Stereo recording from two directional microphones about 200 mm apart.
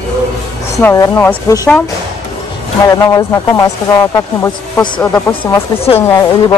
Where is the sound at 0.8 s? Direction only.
15° left (ahead or behind).